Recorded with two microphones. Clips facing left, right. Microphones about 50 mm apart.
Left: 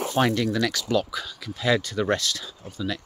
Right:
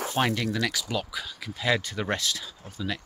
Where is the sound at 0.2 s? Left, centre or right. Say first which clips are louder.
Left 4 dB; centre.